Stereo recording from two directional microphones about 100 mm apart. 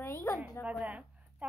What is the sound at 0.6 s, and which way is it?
Speech, 10° right (ahead or behind).